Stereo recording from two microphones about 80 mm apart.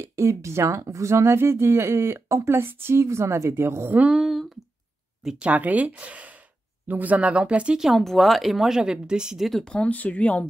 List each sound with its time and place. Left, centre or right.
0.0 s speech: right
3.9 s speech: centre
4.2 s a sound: centre
5.2 s speech: centre
5.5 s speech: centre